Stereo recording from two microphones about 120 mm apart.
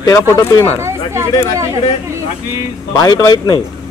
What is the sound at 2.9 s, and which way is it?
Speech, 30° left (ahead or behind).